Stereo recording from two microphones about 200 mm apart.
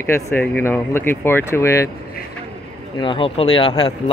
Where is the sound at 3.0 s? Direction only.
25° left (ahead or behind).